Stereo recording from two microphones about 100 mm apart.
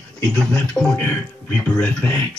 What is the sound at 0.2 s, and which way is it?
Speech, 5° left (ahead or behind).